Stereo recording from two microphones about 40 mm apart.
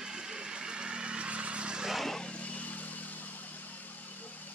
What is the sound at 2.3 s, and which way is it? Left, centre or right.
Vehicle, left.